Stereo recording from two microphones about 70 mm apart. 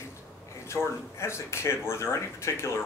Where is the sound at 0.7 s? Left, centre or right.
Left.